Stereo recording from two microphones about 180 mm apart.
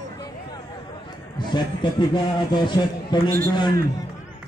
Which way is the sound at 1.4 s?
25° left (ahead or behind).